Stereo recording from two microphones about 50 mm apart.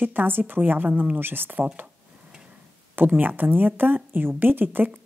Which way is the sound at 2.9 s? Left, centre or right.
Right.